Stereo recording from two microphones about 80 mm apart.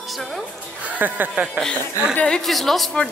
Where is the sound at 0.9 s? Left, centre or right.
Right.